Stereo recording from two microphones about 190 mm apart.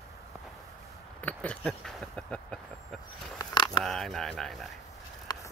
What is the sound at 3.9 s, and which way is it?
Speech, centre (ahead or behind).